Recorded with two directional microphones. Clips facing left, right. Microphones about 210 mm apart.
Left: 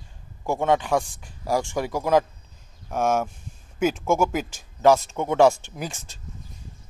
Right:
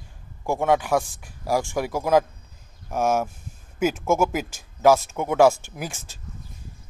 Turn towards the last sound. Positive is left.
turn(degrees=-5)  # may be behind; listen again after turning